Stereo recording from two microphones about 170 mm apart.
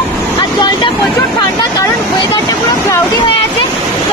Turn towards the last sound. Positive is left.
turn(degrees=30)  # may be behind; listen again after turning